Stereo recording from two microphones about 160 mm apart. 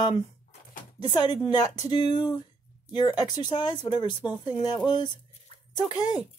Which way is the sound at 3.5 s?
30° left (ahead or behind).